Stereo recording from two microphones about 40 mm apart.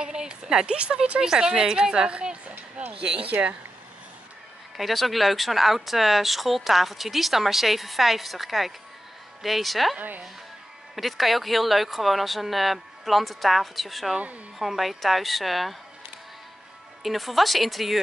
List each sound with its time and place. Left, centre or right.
0.0 s a sound: centre
0.7 s a woman's voice: right
1.2 s a woman's voice: centre
2.4 s a sound: right
3.3 s speech: right
4.7 s speech: centre
9.9 s speech: right
11.0 s speech: centre
17.0 s speech: centre